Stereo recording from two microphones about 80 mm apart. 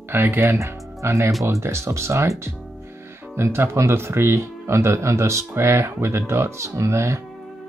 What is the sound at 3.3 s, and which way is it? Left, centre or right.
Speech, right.